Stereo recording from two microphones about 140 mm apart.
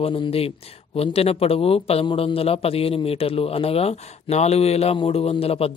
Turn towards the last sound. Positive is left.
turn(degrees=45)  # may be behind; listen again after turning